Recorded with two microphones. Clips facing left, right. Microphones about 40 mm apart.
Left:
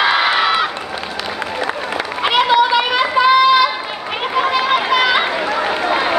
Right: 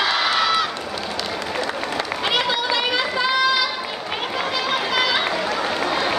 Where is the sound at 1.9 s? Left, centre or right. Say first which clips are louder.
Left 6 dB; left.